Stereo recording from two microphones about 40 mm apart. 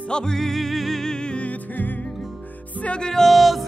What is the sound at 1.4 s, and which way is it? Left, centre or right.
Music, left.